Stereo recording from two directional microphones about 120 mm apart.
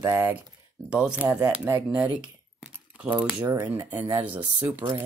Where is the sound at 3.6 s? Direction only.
15° right (ahead or behind).